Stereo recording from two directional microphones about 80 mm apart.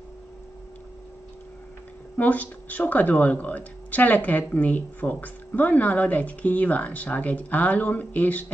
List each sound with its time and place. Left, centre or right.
2.1 s speech: centre